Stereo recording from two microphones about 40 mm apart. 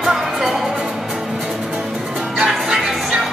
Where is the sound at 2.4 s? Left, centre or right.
Centre.